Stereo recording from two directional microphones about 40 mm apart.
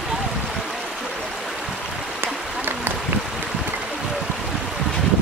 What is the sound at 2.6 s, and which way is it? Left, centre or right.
Boat, right.